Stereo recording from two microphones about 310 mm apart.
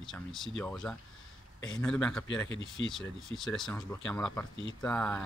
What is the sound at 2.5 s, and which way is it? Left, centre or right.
Speech, left.